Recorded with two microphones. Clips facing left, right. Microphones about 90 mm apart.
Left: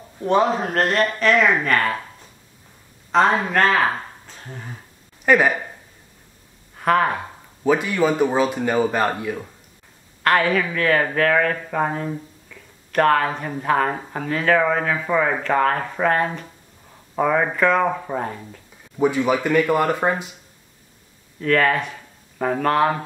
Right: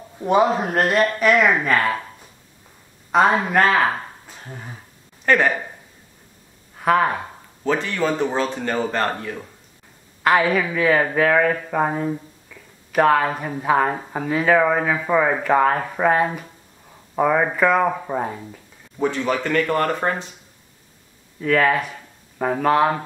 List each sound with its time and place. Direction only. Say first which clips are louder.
0.2 s speech: right 1 dB; 10° right (ahead or behind)
3.1 s speech: right 1 dB; 5° right (ahead or behind)
5.2 s speech: left 1 dB; 10° left (ahead or behind)
6.8 s speech: even; centre (ahead or behind)
7.6 s speech: left 3 dB; 10° left (ahead or behind)
10.2 s speech: right 1 dB; 5° right (ahead or behind)
18.9 s speech: left 3 dB; 10° left (ahead or behind)
21.4 s speech: even; 5° right (ahead or behind)